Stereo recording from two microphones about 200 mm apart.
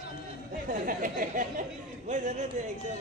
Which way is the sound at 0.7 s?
45° right (ahead or behind).